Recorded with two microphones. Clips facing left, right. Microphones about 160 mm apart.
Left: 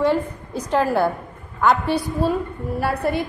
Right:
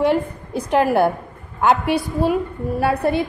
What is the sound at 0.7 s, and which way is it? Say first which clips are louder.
A woman's voice: right 3 dB; 15° right (ahead or behind).